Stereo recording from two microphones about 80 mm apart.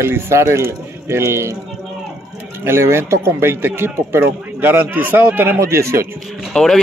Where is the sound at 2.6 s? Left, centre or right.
Right.